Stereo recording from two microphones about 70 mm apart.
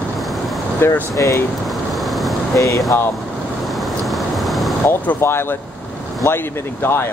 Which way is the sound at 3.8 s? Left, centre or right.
Centre.